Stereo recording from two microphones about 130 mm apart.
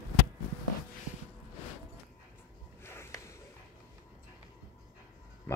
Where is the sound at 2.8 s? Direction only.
20° left (ahead or behind).